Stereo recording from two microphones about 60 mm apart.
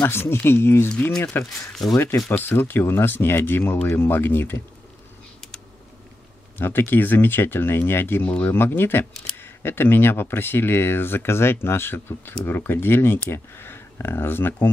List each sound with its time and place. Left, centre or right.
0.0 s speech: left
6.6 s speech: left